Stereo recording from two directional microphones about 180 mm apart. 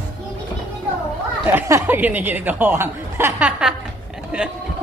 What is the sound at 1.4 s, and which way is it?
Speech, 15° right (ahead or behind).